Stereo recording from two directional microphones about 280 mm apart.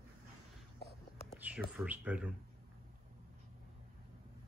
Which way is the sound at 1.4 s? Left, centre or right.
Centre.